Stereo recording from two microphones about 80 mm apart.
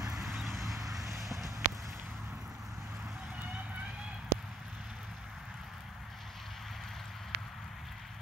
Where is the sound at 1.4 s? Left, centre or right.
Right.